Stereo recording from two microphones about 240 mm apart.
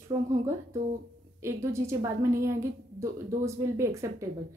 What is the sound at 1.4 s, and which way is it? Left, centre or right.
A woman's voice, centre.